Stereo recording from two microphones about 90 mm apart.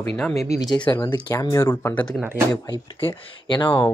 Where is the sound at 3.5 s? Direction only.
65° left (ahead or behind).